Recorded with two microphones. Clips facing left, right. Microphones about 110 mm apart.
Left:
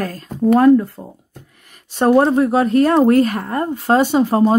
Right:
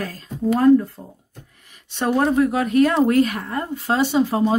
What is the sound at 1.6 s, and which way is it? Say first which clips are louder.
A woman's voice: left 8 dB; 45° left (ahead or behind).